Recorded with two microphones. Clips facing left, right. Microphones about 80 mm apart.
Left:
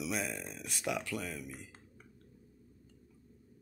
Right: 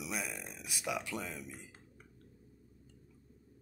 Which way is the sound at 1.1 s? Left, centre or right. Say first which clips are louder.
Left 2 dB; right.